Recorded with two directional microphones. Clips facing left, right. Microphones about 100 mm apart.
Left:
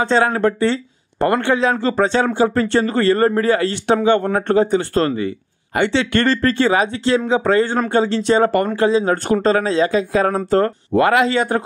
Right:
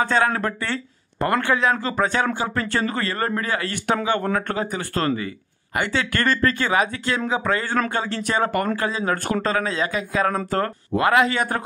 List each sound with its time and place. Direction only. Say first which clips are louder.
0.0 s speech: left 5 dB; 30° left (ahead or behind)